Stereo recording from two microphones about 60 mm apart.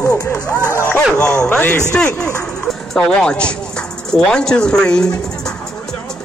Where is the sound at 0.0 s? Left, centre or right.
Left.